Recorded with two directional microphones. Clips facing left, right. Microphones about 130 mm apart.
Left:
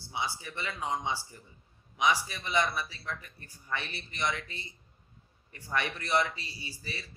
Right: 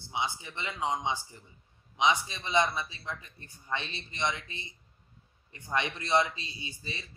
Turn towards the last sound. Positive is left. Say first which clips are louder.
# even
turn(degrees=-20)  # may be behind; listen again after turning